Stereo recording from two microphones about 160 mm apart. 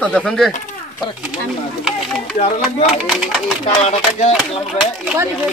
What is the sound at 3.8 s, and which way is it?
Speech, 40° left (ahead or behind).